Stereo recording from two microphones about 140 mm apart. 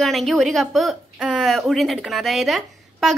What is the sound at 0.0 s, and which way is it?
A woman's voice, centre (ahead or behind).